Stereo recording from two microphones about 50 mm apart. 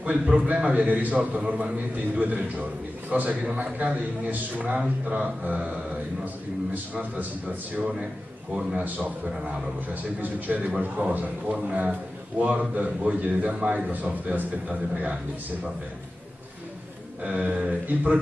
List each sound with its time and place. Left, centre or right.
0.0 s a man's voice: right
6.7 s a man's voice: right
10.2 s a man's voice: right
17.2 s a man's voice: right